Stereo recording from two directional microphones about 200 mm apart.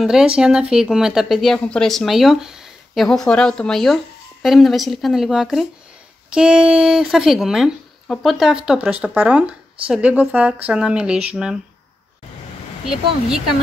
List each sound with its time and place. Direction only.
0.0 s speech: 5° right (ahead or behind)